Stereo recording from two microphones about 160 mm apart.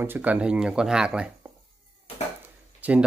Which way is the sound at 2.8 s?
10° right (ahead or behind).